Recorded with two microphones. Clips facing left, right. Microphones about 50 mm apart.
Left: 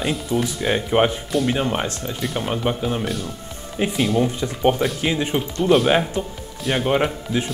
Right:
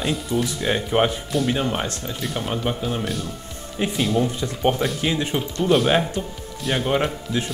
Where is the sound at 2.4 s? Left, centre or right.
Centre.